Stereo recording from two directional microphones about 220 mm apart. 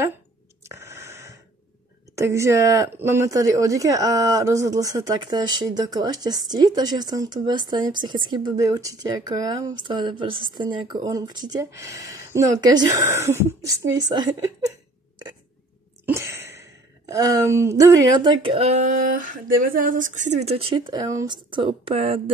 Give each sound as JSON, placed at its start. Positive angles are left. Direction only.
{"t": 0.7, "sound": "a sound", "side_deg": -10}
{"t": 2.1, "sound": "speech", "side_deg": -10}
{"t": 16.1, "sound": "speech", "side_deg": -10}